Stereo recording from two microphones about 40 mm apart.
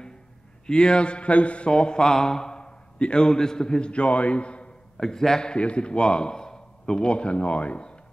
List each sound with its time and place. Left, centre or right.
0.7 s speech: left
4.9 s a man's voice: centre; by 8.0 s left